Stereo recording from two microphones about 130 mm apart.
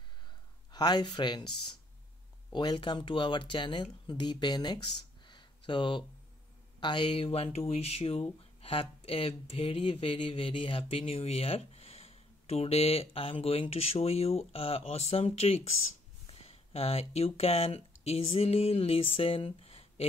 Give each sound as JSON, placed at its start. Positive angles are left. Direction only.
{"t": 0.7, "sound": "speech", "side_deg": 30}
{"t": 2.5, "sound": "speech", "side_deg": 35}